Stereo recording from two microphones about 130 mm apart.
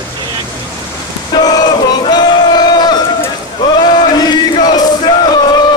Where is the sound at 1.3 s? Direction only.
35° left (ahead or behind).